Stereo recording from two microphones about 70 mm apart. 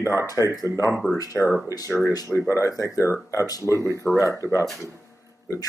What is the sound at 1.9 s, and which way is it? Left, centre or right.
Speech, left.